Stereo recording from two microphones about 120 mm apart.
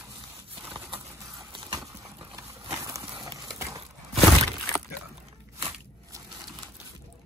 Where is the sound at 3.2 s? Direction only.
30° right (ahead or behind).